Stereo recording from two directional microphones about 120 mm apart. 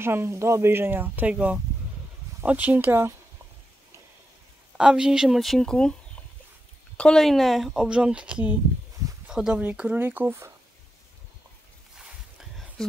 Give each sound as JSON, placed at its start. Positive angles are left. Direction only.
{"t": 0.0, "sound": "speech", "side_deg": -20}
{"t": 4.7, "sound": "speech", "side_deg": -5}
{"t": 7.0, "sound": "speech", "side_deg": 5}
{"t": 12.4, "sound": "a sound", "side_deg": 0}